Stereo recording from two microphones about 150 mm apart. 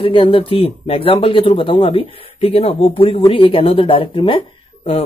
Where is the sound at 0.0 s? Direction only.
35° left (ahead or behind).